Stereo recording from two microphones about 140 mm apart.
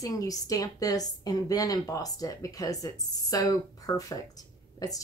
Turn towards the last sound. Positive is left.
turn(degrees=25)  # may be behind; listen again after turning